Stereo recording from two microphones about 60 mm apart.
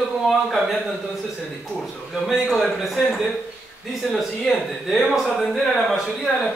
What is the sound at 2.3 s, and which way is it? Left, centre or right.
Speech, centre.